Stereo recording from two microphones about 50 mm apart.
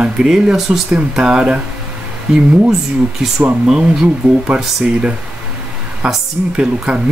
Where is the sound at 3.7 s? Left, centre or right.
Right.